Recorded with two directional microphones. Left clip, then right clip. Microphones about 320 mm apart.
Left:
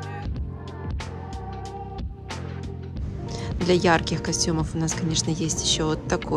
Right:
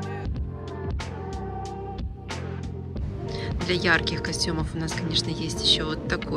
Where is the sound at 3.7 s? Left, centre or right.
Centre.